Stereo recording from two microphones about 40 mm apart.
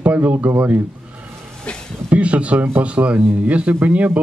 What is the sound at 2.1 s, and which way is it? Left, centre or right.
Speech, right.